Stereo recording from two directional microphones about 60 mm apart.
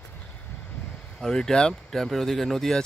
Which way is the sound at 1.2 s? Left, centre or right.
Centre.